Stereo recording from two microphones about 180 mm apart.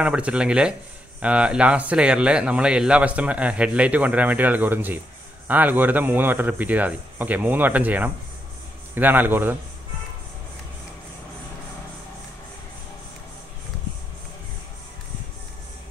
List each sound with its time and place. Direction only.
0.0 s speech: 5° right (ahead or behind)